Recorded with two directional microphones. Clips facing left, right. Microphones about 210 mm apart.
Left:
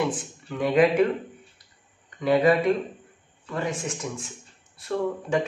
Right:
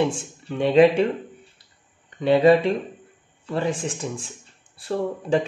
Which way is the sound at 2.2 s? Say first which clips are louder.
Right 3 dB; 25° right (ahead or behind).